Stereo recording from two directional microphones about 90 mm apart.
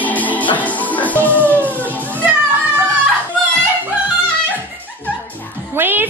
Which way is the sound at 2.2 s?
20° right (ahead or behind).